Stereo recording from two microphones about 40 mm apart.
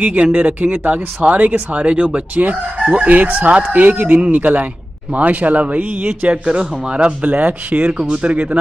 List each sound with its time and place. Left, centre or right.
0.0 s a man's voice: right
4.4 s a man's voice: right
5.1 s speech: right